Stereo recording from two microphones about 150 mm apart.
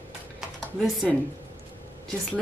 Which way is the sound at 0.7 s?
Centre (ahead or behind).